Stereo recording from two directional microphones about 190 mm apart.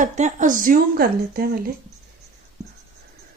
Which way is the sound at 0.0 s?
40° right (ahead or behind).